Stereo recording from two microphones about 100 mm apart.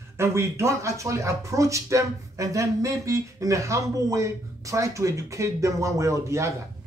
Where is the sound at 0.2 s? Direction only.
25° right (ahead or behind).